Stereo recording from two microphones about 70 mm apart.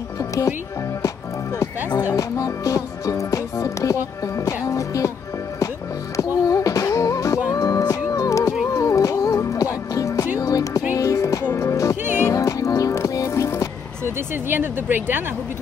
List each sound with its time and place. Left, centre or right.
0.2 s speech: left
1.0 s music: left
6.1 s music: left
14.0 s speech: right